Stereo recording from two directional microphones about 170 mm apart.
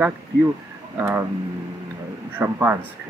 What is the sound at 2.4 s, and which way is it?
Speech, 15° right (ahead or behind).